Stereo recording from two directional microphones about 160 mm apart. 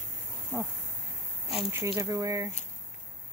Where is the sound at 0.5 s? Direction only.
20° right (ahead or behind).